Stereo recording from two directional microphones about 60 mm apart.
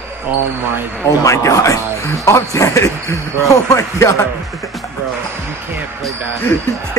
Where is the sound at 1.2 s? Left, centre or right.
Left.